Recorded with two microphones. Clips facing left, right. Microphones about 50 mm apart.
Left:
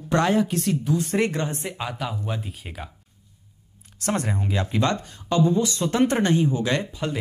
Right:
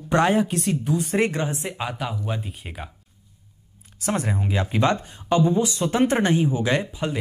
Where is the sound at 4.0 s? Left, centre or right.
Centre.